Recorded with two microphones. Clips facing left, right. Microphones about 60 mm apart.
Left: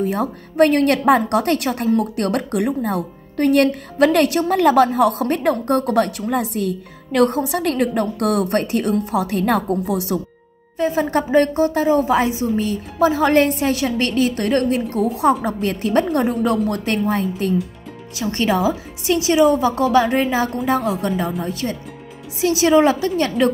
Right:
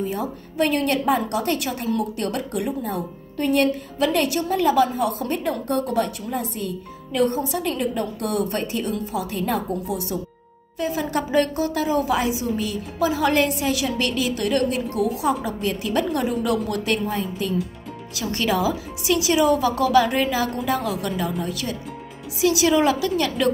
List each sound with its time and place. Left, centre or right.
0.0 s a woman's voice: left
10.8 s a woman's voice: left
15.2 s a woman's voice: left
17.1 s a woman's voice: left
18.1 s a woman's voice: left